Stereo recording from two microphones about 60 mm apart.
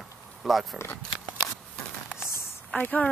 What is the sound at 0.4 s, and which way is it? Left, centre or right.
Speech, centre.